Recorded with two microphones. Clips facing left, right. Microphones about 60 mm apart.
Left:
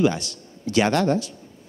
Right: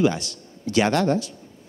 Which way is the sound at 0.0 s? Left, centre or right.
Centre.